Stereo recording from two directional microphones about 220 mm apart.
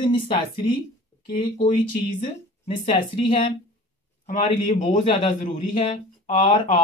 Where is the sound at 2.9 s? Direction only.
25° left (ahead or behind).